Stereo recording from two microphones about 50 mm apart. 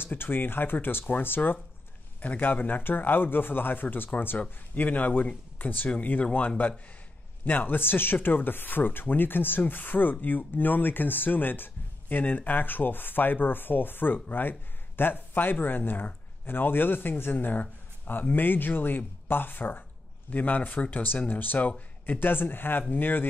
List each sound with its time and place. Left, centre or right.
0.0 s speech: left
2.1 s speech: left
4.4 s speech: left